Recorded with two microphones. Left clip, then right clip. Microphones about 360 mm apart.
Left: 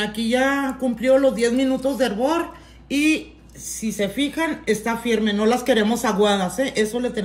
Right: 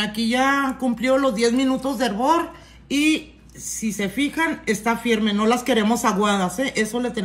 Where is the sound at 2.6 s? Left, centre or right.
Left.